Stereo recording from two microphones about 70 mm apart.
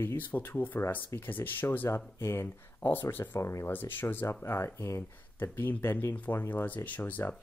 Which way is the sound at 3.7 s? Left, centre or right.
Left.